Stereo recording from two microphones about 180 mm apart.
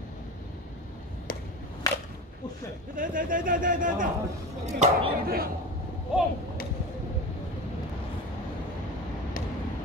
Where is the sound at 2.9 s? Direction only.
50° right (ahead or behind).